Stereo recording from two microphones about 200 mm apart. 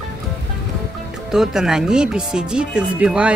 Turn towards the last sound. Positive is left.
turn(degrees=-5)  # may be behind; listen again after turning